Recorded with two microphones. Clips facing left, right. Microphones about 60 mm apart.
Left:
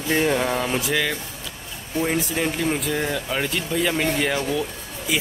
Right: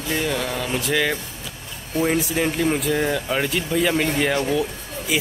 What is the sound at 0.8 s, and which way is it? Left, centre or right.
Speech, centre.